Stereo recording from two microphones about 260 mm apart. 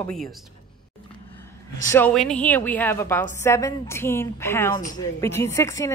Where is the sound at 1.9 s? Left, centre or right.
Centre.